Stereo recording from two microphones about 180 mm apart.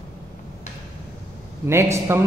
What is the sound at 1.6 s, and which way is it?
Speech, 15° right (ahead or behind).